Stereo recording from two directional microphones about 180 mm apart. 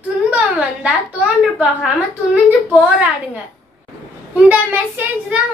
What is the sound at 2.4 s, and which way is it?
Child singing, 5° right (ahead or behind).